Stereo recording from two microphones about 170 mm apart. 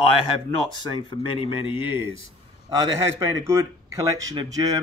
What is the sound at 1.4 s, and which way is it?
Speech, 30° left (ahead or behind).